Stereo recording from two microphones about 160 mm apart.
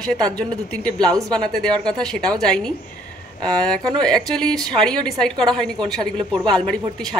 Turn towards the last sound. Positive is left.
turn(degrees=5)  # may be behind; listen again after turning